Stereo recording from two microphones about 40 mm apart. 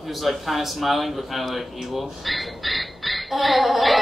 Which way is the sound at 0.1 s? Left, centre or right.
Centre.